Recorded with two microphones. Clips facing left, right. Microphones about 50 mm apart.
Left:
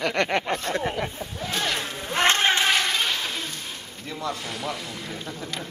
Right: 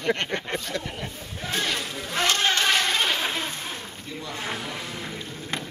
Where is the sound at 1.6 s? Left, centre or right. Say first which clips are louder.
Left 1 dB; left.